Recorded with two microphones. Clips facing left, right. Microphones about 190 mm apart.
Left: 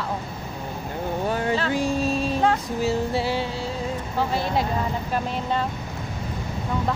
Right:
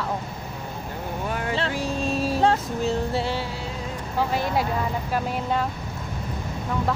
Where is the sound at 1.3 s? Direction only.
30° left (ahead or behind).